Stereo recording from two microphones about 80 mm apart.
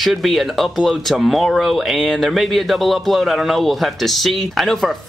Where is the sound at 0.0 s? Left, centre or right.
Centre.